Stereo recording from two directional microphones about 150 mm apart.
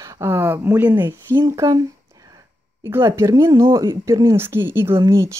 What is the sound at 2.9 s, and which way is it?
Speech, 20° right (ahead or behind).